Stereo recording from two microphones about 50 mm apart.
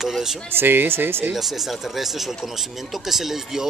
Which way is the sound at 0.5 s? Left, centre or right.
Right.